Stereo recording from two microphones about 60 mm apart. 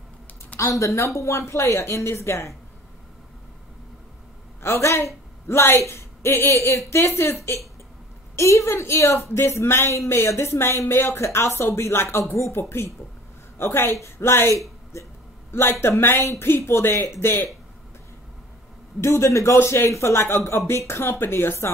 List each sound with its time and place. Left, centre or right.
0.6 s a woman's voice: left
4.6 s a woman's voice: left
18.9 s a woman's voice: left